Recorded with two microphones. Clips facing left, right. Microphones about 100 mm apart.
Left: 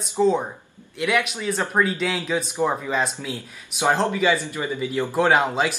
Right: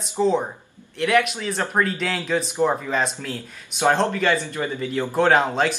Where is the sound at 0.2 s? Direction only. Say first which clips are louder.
Left 1 dB; centre (ahead or behind).